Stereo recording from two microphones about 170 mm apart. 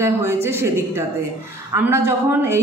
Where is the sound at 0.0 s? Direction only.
15° right (ahead or behind).